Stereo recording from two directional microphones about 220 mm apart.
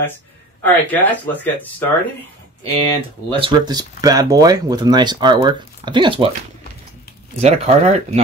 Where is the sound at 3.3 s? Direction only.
20° right (ahead or behind).